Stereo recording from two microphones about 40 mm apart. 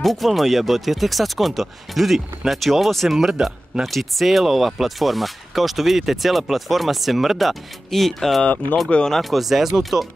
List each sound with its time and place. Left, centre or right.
0.0 s speech: centre
3.2 s speech: centre
3.8 s speech: centre
8.8 s speech: left
9.1 s speech: centre